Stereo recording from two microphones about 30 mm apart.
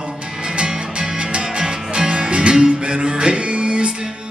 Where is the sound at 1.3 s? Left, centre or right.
Right.